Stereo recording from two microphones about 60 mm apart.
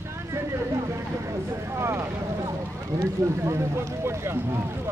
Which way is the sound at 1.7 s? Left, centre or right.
Right.